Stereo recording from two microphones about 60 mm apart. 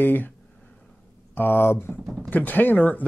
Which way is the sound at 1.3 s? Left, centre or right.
Left.